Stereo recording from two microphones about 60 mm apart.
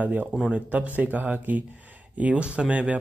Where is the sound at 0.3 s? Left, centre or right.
Centre.